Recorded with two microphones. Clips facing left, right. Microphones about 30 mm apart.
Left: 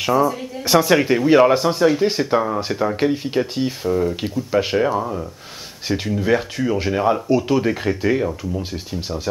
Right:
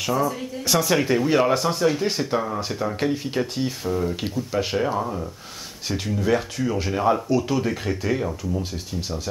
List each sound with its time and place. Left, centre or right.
0.0 s speech: centre